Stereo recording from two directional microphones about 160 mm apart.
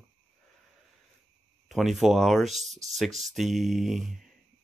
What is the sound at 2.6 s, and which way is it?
Speech, 45° right (ahead or behind).